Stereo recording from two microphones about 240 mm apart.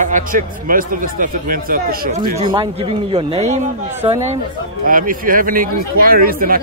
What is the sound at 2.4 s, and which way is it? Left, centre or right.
Speech, centre.